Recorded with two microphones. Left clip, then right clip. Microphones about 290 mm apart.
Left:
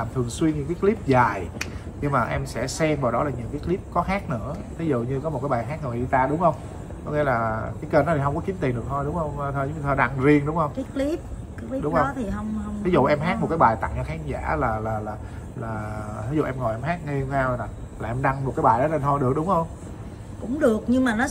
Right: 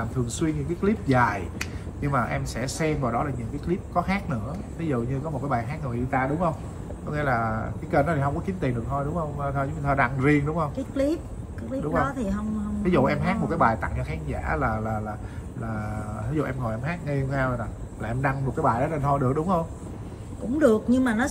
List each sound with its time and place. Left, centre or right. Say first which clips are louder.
0.4 s speech: left 4 dB; centre
12.0 s speech: left 2 dB; centre
16.3 s speech: left 4 dB; centre
20.5 s speech: even; centre